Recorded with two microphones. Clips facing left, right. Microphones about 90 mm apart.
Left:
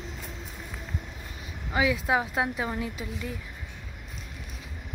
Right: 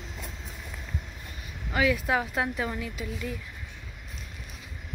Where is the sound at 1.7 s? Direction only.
20° left (ahead or behind).